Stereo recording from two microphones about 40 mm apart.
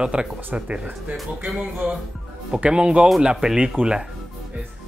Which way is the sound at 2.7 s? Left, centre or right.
Right.